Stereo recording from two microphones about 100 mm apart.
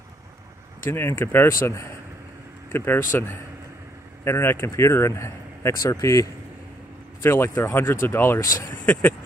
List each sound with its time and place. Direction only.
0.8 s speech: 25° left (ahead or behind)
7.2 s speech: 25° left (ahead or behind)
8.8 s speech: 15° left (ahead or behind)